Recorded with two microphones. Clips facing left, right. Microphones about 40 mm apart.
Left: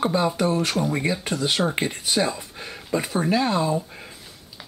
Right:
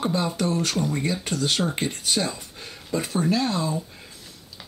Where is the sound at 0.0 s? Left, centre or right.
Centre.